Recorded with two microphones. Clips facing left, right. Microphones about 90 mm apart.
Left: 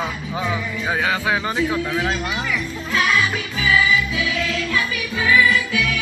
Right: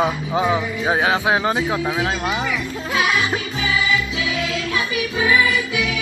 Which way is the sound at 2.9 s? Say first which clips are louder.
Even; 20° right (ahead or behind).